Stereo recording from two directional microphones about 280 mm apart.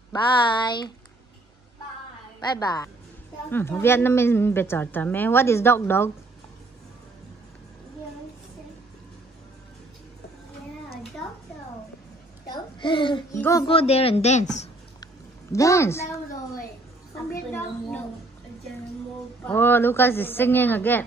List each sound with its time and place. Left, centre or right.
0.1 s a woman's voice: centre
2.4 s a woman's voice: centre
12.4 s babbling: centre
13.4 s a woman's voice: centre
15.5 s a woman's voice: centre
17.3 s a woman's voice: centre
19.4 s a woman's voice: centre